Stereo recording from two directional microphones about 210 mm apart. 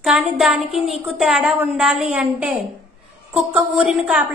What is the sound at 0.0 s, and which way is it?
A woman's voice, centre (ahead or behind).